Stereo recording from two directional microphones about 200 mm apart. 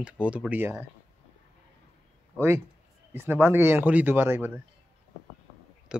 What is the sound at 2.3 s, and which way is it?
Speech, 15° right (ahead or behind).